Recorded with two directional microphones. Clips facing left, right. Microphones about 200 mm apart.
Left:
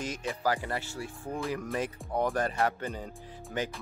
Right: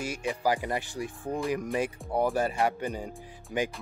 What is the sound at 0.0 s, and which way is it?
Speech, 10° right (ahead or behind).